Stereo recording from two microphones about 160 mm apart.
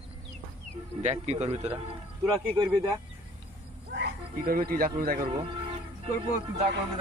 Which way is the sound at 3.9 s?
80° right.